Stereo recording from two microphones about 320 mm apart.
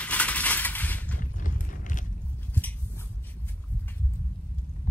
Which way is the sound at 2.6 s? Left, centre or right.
Centre.